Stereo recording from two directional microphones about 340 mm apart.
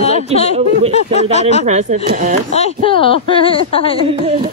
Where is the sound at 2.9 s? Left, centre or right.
Centre.